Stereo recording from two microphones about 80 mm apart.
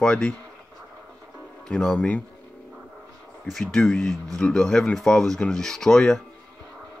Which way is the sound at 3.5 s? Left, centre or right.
Centre.